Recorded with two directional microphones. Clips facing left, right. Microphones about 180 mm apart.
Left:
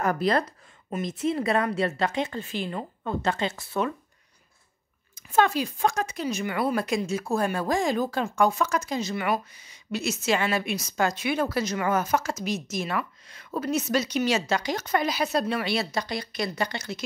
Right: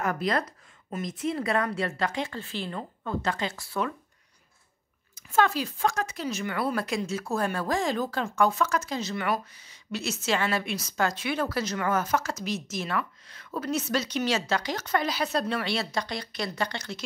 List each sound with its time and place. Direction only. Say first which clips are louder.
0.0 s a woman's voice: left 4 dB; 35° left (ahead or behind)
5.1 s speech: left 2 dB; 20° left (ahead or behind)